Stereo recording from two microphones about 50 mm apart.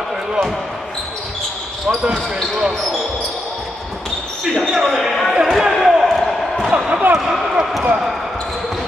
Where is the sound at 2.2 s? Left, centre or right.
Centre.